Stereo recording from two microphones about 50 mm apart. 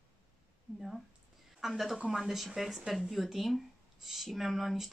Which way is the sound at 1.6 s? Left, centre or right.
Centre.